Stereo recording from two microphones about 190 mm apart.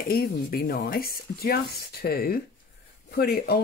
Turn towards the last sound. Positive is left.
turn(degrees=55)  # may be behind; listen again after turning